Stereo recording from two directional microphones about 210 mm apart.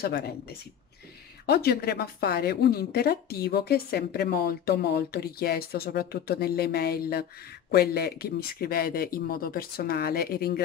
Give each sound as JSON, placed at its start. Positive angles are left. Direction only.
{"t": 0.0, "sound": "speech", "side_deg": 45}